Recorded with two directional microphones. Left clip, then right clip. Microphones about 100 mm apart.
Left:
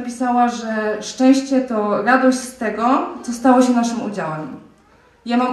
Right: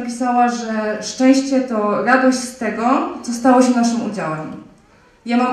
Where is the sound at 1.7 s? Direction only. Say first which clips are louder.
Even; 25° right (ahead or behind).